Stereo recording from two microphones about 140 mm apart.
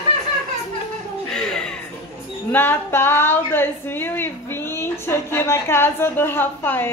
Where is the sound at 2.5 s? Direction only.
15° left (ahead or behind).